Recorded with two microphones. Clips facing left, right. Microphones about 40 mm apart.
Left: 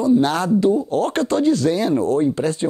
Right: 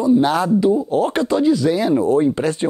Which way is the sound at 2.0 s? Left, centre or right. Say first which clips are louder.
Right 2 dB; right.